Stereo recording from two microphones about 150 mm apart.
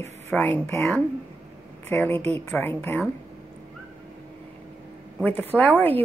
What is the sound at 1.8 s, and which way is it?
Speech, 15° left (ahead or behind).